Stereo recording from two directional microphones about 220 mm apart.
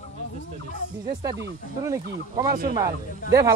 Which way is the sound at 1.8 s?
15° right (ahead or behind).